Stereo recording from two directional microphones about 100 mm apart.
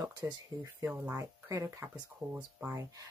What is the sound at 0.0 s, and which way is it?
Speech, 40° right (ahead or behind).